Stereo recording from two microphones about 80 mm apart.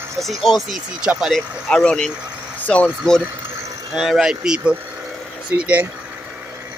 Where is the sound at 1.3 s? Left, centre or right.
Centre.